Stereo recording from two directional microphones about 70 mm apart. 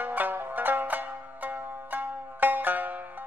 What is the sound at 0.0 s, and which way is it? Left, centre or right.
Zither, right.